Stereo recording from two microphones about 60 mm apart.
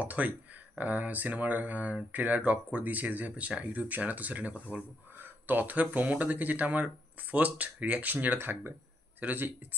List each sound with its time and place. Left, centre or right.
0.0 s speech: right